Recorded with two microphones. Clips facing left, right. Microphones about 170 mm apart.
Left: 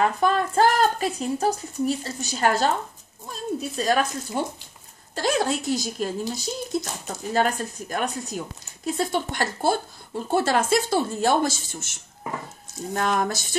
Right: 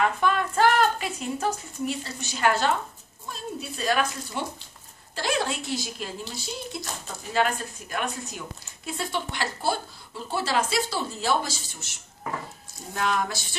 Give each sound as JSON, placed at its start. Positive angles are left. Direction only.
{"t": 0.0, "sound": "a woman's voice", "side_deg": 40}